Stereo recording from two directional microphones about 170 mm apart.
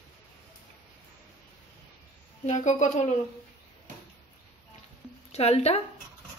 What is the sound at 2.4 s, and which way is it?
Speech, 45° left (ahead or behind).